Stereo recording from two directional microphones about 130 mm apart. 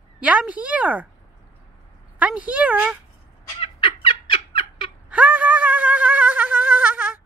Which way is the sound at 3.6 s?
50° left (ahead or behind).